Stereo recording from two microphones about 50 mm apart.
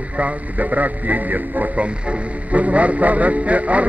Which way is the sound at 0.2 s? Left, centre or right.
Right.